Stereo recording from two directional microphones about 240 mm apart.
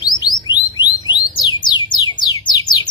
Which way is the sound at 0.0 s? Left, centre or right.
Centre.